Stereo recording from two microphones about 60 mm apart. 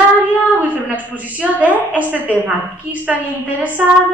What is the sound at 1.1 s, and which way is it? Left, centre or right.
A woman's voice, right.